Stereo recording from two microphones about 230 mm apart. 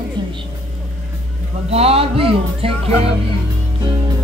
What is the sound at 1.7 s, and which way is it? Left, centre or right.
Speech, right.